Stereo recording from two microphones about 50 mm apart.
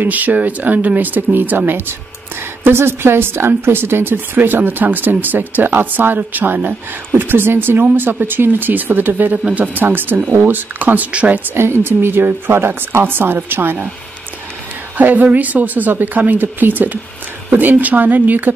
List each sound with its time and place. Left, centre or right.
0.0 s a woman's voice: right
11.5 s a woman's voice: right
15.0 s speech: right